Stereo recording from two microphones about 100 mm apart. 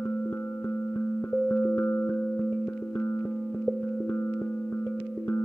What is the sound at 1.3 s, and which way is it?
Music, 15° left (ahead or behind).